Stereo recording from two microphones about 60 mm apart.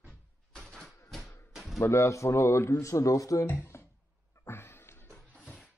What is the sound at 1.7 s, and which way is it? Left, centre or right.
Speech, left.